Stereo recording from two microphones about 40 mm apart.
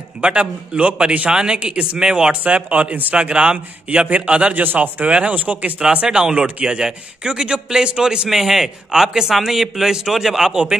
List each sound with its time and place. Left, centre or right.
0.2 s a man's voice: right
2.5 s a man's voice: right
4.6 s speech: right
6.0 s a man's voice: centre